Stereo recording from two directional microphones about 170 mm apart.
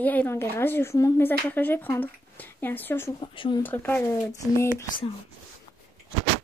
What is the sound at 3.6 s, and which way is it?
Speech, 10° left (ahead or behind).